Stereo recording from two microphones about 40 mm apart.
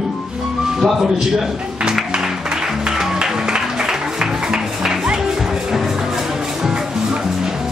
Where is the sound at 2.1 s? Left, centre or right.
Centre.